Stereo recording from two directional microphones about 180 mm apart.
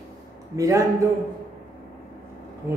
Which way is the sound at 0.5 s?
15° right (ahead or behind).